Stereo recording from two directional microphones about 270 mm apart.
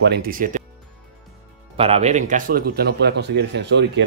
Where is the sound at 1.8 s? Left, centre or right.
Right.